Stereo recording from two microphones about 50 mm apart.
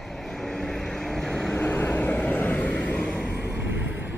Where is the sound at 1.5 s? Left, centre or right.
Left.